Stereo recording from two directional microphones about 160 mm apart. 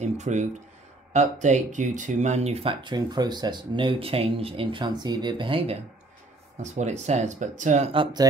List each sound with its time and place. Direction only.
0.0 s speech: 45° right (ahead or behind)
6.6 s speech: 45° right (ahead or behind)
7.9 s speech: 30° right (ahead or behind)